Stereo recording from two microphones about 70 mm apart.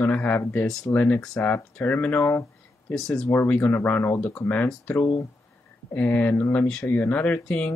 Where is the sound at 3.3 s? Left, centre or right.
Left.